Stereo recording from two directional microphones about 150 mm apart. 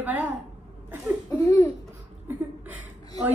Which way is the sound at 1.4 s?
20° left (ahead or behind).